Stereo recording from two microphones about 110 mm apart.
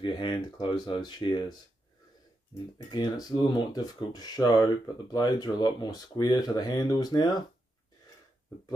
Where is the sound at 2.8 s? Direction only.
40° left (ahead or behind).